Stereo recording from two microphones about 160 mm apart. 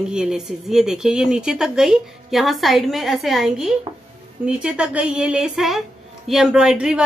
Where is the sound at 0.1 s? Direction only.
5° right (ahead or behind).